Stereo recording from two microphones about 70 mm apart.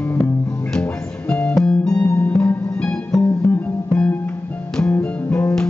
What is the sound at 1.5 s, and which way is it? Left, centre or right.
Music, centre.